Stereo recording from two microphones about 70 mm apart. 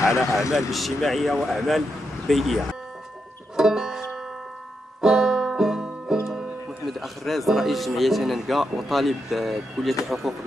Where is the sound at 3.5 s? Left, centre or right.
Centre.